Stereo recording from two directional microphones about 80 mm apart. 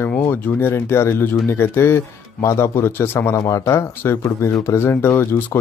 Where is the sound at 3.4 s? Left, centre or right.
Left.